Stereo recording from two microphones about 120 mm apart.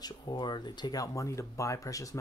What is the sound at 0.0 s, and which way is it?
Speech, 35° left (ahead or behind).